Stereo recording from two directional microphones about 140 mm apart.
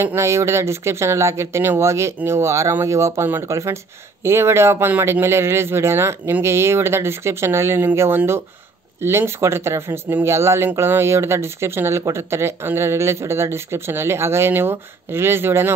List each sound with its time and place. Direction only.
0.0 s speech: 20° right (ahead or behind)